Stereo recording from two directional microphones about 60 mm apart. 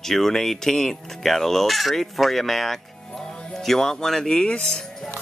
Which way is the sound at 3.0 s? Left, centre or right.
Centre.